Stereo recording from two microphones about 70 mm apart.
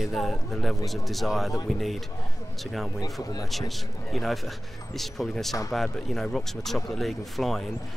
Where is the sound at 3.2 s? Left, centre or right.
Left.